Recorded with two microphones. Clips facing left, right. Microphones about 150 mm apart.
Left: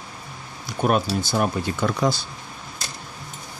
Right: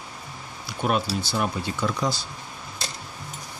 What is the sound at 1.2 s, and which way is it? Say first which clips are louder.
Speech: left 4 dB; 45° left (ahead or behind).